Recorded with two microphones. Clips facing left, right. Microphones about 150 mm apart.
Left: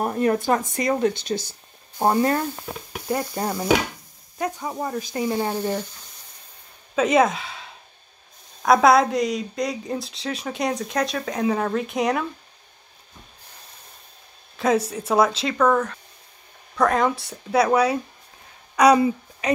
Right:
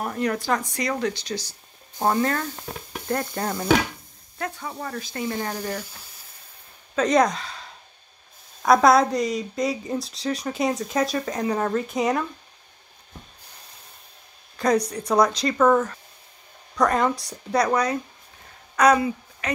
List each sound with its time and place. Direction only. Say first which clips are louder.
0.0 s a sound: left 5 dB; 30° left (ahead or behind)
0.7 s speech: left 4 dB; 25° left (ahead or behind)
1.1 s speech: left 4 dB; 55° left (ahead or behind)
2.0 s speech: left 3 dB; 20° left (ahead or behind)
2.9 s stir: left 1 dB; 10° left (ahead or behind)
4.4 s speech: left 4 dB; 20° left (ahead or behind)
7.0 s a woman's voice: left 1 dB; 5° left (ahead or behind)
14.6 s a woman's voice: left 1 dB; 5° left (ahead or behind)
18.9 s a woman's voice: left 5 dB; 25° left (ahead or behind)